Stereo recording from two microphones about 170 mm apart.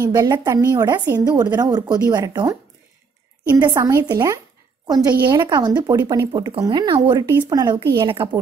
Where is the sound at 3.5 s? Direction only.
20° right (ahead or behind).